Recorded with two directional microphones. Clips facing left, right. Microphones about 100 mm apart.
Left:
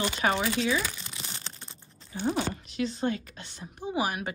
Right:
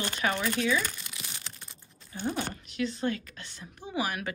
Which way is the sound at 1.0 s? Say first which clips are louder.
Left 2 dB; 30° left (ahead or behind).